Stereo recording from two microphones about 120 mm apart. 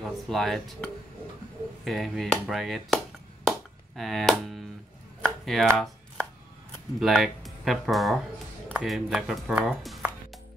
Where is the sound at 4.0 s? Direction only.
Centre (ahead or behind).